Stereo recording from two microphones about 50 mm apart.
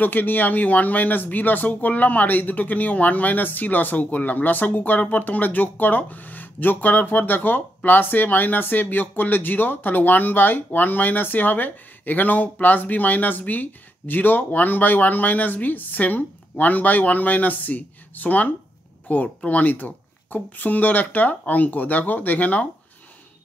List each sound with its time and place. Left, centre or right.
0.0 s speech: left